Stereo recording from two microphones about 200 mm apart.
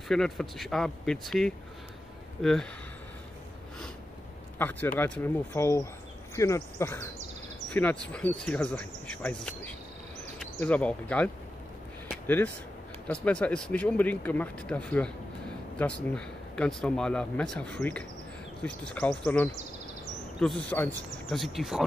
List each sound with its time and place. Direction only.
0.1 s speech: centre (ahead or behind)
4.6 s speech: 10° left (ahead or behind)
13.1 s speech: 5° left (ahead or behind)
16.2 s speech: 5° left (ahead or behind)